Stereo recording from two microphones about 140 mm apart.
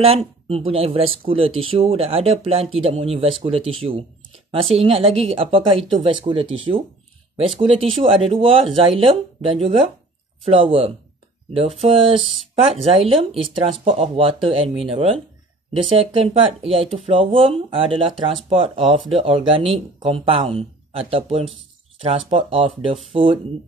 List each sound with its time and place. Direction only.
0.0 s speech: 45° right (ahead or behind)